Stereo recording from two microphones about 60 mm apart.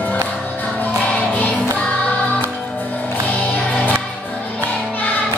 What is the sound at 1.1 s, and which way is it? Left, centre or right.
Music, left.